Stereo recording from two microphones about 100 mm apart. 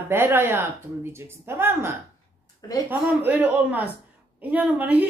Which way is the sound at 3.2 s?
15° right (ahead or behind).